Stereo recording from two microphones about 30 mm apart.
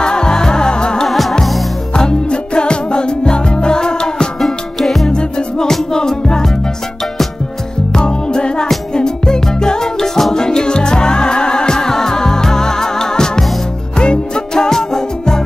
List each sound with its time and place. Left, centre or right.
0.0 s music: left
1.0 s music: centre
2.0 s music: left
4.7 s music: centre
5.0 s music: left
7.9 s music: left